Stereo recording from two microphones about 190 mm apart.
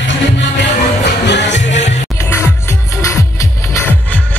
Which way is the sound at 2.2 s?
15° left (ahead or behind).